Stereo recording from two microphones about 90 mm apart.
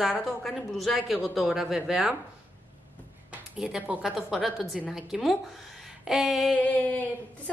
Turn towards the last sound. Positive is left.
turn(degrees=20)  # may be behind; listen again after turning